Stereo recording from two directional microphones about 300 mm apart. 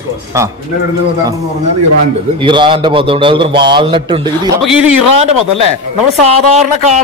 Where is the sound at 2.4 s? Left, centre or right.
Centre.